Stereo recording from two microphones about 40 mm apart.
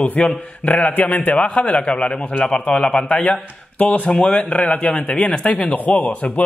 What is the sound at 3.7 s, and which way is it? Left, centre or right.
A man's voice, left.